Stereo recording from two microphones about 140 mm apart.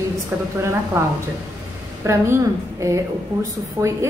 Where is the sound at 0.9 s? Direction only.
20° right (ahead or behind).